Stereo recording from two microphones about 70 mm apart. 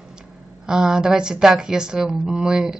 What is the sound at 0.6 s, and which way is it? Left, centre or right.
A woman's voice, centre.